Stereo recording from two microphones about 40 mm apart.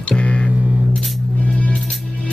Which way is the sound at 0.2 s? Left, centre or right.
Left.